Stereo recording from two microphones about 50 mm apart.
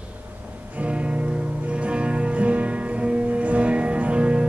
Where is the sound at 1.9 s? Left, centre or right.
Right.